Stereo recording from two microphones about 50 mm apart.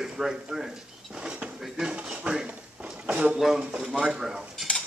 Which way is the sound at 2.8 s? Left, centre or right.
Centre.